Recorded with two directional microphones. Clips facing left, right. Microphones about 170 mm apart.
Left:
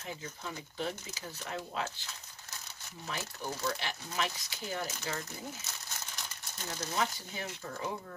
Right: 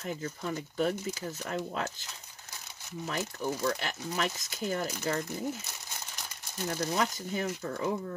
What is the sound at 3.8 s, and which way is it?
Speech, 50° right (ahead or behind).